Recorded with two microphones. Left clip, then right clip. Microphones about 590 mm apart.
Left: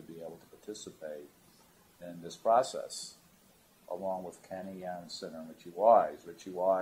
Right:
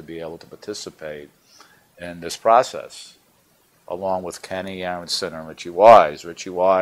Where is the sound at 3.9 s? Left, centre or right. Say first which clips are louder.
Right 13 dB; right.